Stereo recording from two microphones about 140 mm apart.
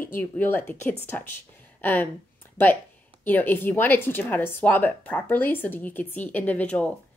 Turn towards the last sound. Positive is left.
turn(degrees=10)  # may be behind; listen again after turning